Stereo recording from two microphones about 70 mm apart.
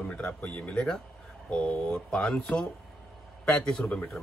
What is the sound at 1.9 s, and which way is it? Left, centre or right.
Speech, centre.